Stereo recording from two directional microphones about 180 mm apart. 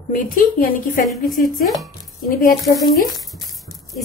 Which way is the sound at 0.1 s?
50° left (ahead or behind).